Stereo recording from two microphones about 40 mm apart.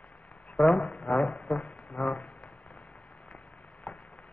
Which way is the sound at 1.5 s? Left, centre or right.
Left.